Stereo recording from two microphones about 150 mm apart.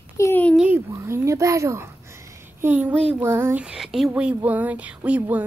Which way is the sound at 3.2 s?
15° right (ahead or behind).